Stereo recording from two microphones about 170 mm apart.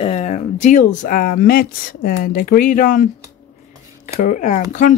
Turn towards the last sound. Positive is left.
turn(degrees=45)  # may be behind; listen again after turning